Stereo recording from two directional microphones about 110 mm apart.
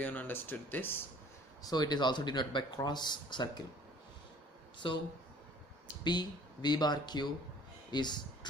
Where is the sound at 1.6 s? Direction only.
35° left (ahead or behind).